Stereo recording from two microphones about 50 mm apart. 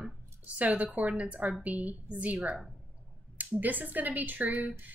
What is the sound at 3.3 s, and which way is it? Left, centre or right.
A woman's voice, right.